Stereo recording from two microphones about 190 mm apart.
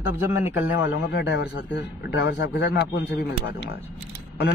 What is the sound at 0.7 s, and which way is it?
A man's voice, 70° left (ahead or behind).